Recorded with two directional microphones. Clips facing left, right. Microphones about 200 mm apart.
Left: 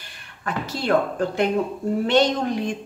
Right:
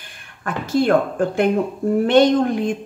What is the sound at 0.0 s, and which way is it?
Speech, 50° right (ahead or behind).